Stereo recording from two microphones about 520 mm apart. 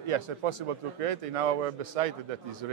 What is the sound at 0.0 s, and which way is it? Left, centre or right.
A man's voice, right.